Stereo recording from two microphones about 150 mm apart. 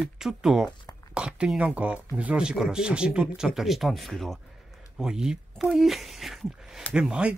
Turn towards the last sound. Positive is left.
turn(degrees=-5)  # may be behind; listen again after turning